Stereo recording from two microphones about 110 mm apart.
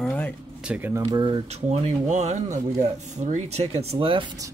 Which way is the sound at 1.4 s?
75° right (ahead or behind).